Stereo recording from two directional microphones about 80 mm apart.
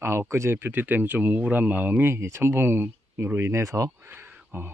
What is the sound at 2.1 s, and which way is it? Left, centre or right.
Speech, right.